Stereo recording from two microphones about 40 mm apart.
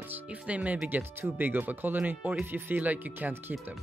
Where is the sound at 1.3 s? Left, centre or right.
Right.